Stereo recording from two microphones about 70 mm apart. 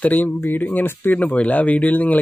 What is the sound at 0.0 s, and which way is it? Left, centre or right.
Speech, left.